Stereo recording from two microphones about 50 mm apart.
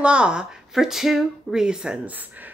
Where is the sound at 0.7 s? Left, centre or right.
Centre.